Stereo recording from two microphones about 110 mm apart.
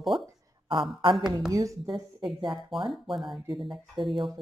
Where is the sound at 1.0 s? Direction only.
45° right (ahead or behind).